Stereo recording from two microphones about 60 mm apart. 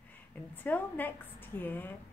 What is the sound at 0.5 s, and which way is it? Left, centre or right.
Speech, left.